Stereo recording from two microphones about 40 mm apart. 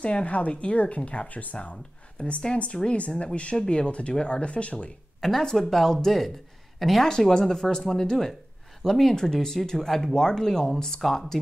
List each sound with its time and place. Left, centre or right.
0.0 s a woman's voice: left
5.2 s speech: centre
7.3 s speech: centre